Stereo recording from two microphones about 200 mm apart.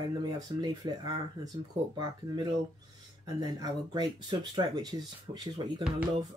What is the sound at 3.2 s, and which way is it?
Speech, 20° right (ahead or behind).